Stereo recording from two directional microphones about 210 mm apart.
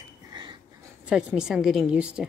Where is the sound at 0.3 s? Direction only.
20° right (ahead or behind).